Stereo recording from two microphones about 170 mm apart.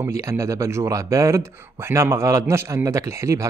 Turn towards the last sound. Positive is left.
turn(degrees=-15)  # may be behind; listen again after turning